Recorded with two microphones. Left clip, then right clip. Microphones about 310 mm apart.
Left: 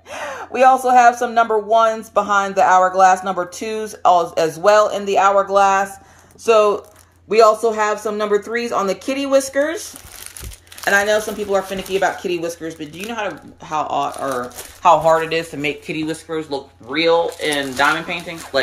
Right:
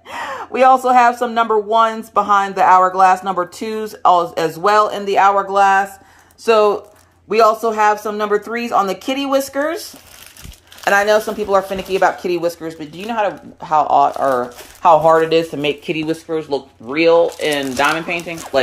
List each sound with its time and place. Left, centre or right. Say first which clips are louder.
0.3 s speech: right 1 dB; centre
7.2 s speech: even; centre; by 18.6 s right